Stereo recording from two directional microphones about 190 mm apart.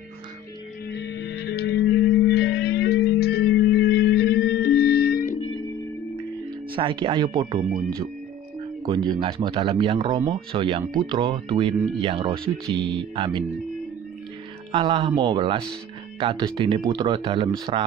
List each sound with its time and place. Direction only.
0.8 s music: 65° left (ahead or behind); by 5.5 s 45° left (ahead or behind)
6.7 s speech: 25° right (ahead or behind)
8.8 s speech: 20° right (ahead or behind)
14.7 s speech: 25° right (ahead or behind)